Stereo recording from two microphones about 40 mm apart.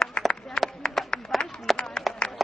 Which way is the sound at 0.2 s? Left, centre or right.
Left.